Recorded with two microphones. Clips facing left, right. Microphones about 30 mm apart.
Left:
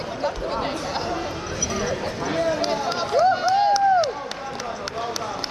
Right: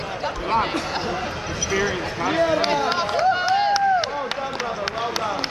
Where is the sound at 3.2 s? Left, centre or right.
Right.